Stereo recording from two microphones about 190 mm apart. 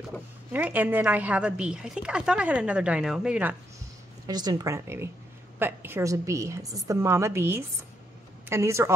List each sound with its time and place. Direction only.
0.5 s a woman's voice: 10° right (ahead or behind)
4.3 s a woman's voice: 20° right (ahead or behind)